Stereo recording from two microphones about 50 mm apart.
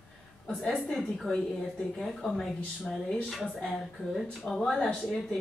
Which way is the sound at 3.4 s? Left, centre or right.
Left.